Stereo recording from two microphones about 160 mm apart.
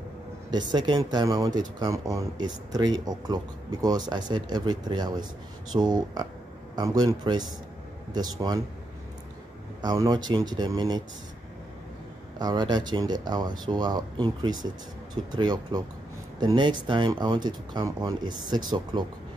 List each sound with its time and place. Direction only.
0.5 s speech: 25° right (ahead or behind)
9.8 s speech: 25° right (ahead or behind)
12.4 s speech: 25° right (ahead or behind)